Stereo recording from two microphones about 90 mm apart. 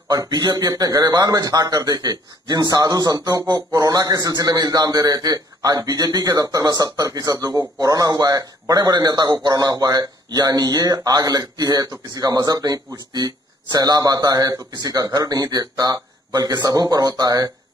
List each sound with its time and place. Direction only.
0.1 s a man's voice: 50° right (ahead or behind)